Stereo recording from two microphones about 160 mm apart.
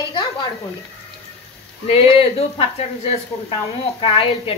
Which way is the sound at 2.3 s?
35° left (ahead or behind).